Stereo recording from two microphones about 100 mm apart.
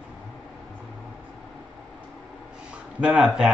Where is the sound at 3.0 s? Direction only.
10° right (ahead or behind).